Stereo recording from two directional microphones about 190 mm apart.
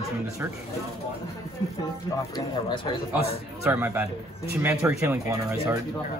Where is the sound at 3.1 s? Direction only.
10° right (ahead or behind).